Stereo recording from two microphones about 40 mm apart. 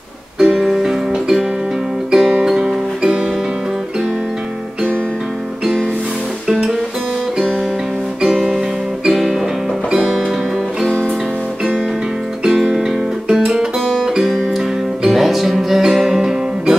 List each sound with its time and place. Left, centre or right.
0.4 s music: centre
6.4 s music: centre
8.2 s music: centre
12.4 s music: centre